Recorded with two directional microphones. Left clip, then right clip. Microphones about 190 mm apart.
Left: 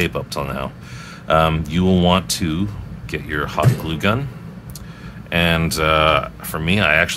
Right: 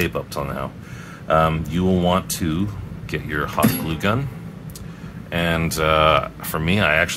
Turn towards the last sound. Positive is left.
turn(degrees=5)  # may be behind; listen again after turning